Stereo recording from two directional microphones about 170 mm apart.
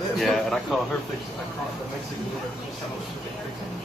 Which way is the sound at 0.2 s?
Centre (ahead or behind).